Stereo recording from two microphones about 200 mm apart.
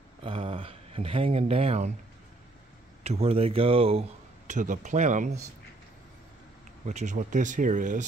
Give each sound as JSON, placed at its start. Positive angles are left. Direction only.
{"t": 0.2, "sound": "speech", "side_deg": -30}
{"t": 3.0, "sound": "a man's voice", "side_deg": -30}
{"t": 6.9, "sound": "speech", "side_deg": -35}